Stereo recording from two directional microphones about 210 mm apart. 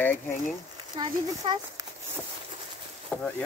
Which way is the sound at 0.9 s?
20° right (ahead or behind).